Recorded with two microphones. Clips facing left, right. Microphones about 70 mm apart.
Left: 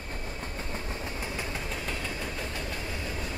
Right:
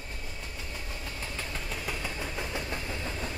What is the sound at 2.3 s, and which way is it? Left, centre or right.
Vehicle, centre.